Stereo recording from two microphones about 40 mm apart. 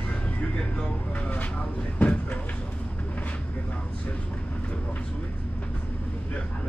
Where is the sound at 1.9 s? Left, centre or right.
Left.